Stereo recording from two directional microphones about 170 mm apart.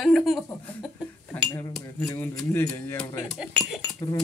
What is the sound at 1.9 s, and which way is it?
Speech, 15° left (ahead or behind).